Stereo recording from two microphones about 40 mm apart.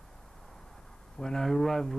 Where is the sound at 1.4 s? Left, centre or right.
Centre.